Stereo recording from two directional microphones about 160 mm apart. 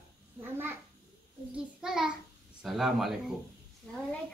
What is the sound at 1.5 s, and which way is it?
A child's voice, 5° right (ahead or behind).